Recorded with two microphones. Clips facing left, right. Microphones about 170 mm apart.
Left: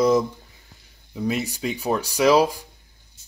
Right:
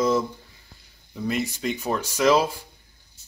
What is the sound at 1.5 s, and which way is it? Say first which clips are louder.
Speech: left 2 dB; 10° left (ahead or behind).